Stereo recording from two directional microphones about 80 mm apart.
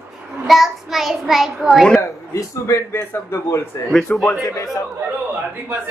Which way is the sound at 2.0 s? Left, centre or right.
Left.